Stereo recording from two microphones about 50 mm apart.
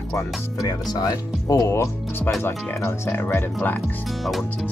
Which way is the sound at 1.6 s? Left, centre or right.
Left.